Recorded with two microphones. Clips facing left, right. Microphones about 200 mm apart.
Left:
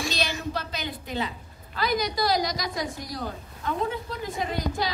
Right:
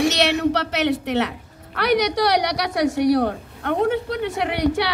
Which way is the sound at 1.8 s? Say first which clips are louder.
Right 7 dB; 75° right (ahead or behind).